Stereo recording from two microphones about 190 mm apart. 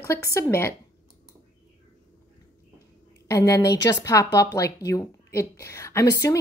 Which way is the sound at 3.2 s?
15° left (ahead or behind).